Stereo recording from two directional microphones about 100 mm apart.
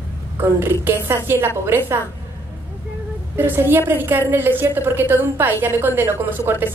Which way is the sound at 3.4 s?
20° right (ahead or behind).